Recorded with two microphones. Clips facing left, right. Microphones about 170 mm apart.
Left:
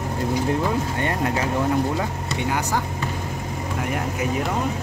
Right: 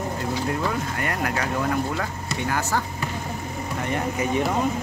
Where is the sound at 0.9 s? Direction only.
25° left (ahead or behind).